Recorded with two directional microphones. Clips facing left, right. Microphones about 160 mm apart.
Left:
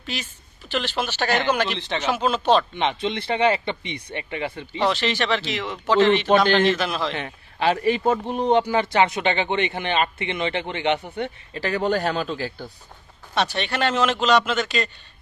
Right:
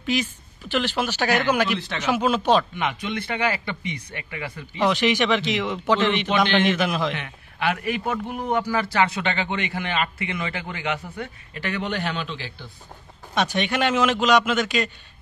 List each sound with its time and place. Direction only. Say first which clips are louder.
0.0 s a man's voice: right 8 dB; 10° right (ahead or behind)
2.7 s a man's voice: left 3 dB; 25° left (ahead or behind)
4.8 s a man's voice: right 2 dB; 15° right (ahead or behind)
6.2 s a man's voice: left 4 dB; 40° left (ahead or behind)
6.6 s a man's voice: left 1 dB; 15° right (ahead or behind)
7.1 s a man's voice: left 1 dB; 30° left (ahead or behind)
13.3 s a man's voice: right 1 dB; 15° right (ahead or behind)